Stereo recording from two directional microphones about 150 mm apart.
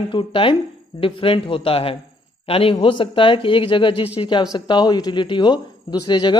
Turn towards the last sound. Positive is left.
turn(degrees=30)  # may be behind; listen again after turning